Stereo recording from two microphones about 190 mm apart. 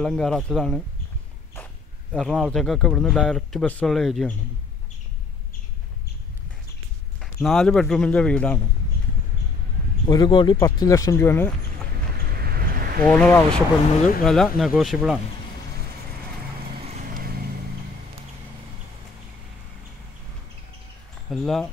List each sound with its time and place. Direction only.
0.0 s speech: 5° left (ahead or behind)
2.1 s speech: centre (ahead or behind)
7.2 s speech: centre (ahead or behind)
10.0 s speech: 20° left (ahead or behind)
12.3 s vehicle: 55° right (ahead or behind)
13.0 s speech: 10° left (ahead or behind)
16.8 s vehicle: 35° right (ahead or behind)
21.3 s speech: centre (ahead or behind)